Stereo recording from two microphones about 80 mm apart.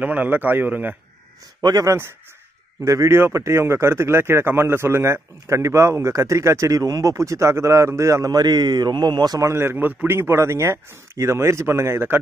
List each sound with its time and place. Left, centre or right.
0.0 s a man's voice: right
1.6 s speech: right
1.9 s speech: right
8.3 s a man's voice: right
9.4 s speech: right